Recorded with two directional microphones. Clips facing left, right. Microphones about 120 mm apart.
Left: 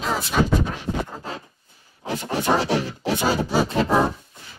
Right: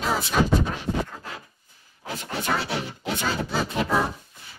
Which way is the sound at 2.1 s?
35° left (ahead or behind).